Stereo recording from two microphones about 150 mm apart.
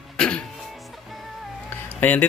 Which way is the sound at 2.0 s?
10° left (ahead or behind).